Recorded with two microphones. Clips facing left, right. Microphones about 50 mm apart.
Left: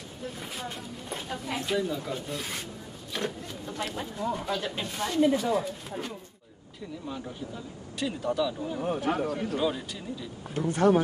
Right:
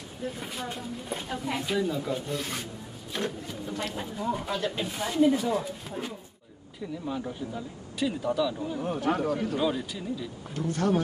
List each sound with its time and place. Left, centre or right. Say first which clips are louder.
0.4 s speech: right 2 dB; centre
10.5 s speech: left 4 dB; left